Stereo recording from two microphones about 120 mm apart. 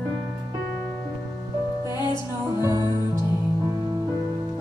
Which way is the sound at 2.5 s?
20° right (ahead or behind).